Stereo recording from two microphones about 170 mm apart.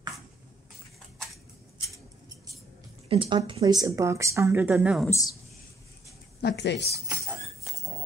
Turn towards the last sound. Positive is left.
turn(degrees=90)